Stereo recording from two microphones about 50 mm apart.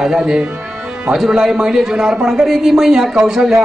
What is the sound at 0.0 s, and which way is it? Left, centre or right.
A man's voice, centre.